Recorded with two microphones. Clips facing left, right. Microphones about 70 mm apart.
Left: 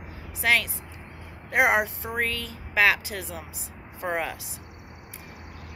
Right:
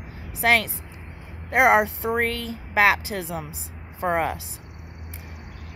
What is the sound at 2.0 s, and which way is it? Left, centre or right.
Speech, right.